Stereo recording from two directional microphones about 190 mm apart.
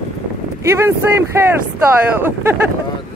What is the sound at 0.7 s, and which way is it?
Speech, 15° right (ahead or behind).